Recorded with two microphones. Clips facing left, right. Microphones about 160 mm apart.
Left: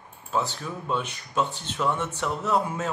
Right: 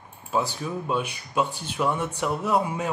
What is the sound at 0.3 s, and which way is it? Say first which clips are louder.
Speech: right 2 dB; 10° right (ahead or behind).